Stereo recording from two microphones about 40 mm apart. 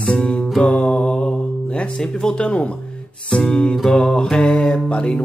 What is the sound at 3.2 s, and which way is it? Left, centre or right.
Speech, centre.